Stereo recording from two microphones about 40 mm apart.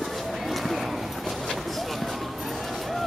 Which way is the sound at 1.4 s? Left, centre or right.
Centre.